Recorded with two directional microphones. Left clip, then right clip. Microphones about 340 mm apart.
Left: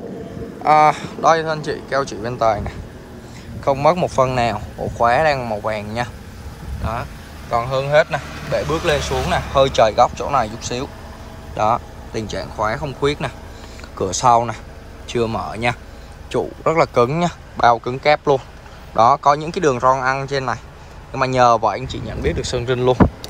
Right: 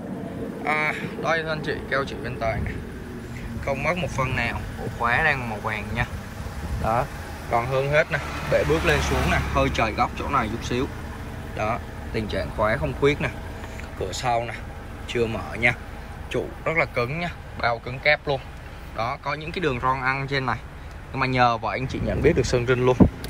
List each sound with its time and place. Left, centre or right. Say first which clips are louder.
0.7 s speech: left 12 dB; centre
3.6 s speech: left 10 dB; centre
7.5 s speech: left 5 dB; centre